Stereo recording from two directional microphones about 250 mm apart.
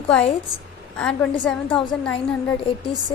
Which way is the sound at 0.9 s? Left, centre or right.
Centre.